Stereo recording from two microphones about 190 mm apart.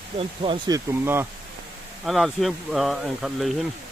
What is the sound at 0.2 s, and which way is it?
Speech, 25° right (ahead or behind).